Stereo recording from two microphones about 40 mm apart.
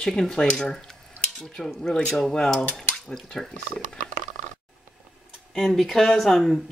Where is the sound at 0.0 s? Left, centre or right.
Centre.